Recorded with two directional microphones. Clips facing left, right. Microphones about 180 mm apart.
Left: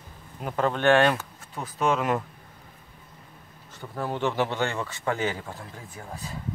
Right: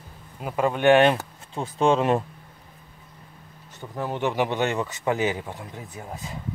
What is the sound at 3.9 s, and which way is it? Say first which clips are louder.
A man's voice: right 1 dB; 15° right (ahead or behind).